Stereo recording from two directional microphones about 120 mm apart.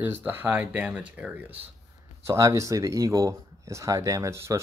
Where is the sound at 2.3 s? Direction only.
25° right (ahead or behind).